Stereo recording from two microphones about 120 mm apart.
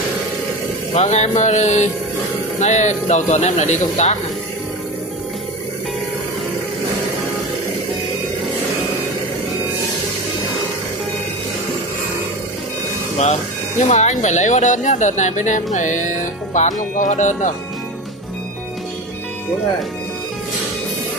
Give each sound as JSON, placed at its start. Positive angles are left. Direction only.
{"t": 0.9, "sound": "speech", "side_deg": 75}
{"t": 13.8, "sound": "speech", "side_deg": 75}